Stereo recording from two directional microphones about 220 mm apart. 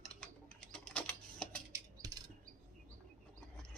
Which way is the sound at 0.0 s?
5° left (ahead or behind).